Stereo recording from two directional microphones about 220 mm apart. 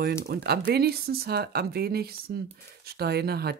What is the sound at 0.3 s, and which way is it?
Speech, 45° right (ahead or behind).